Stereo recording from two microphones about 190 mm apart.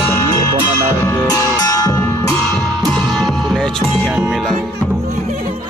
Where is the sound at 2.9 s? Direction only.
Centre (ahead or behind).